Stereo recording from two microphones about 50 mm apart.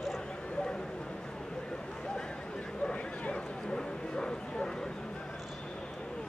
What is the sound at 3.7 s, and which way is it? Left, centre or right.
Bow-wow, centre.